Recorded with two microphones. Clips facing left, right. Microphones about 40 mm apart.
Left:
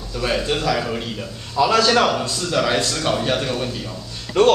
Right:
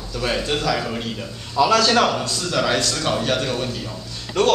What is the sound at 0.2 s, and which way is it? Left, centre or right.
A man's voice, centre.